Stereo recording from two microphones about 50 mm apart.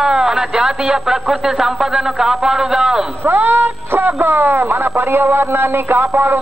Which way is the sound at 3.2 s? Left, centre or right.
Right.